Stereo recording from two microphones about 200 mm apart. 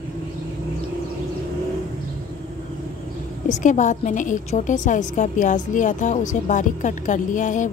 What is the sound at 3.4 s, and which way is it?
Speech, 40° left (ahead or behind).